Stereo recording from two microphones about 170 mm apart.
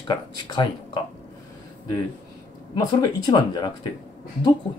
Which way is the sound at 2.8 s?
25° left (ahead or behind).